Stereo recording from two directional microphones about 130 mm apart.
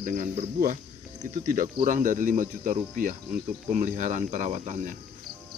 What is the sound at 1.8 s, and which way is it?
Speech, 85° right.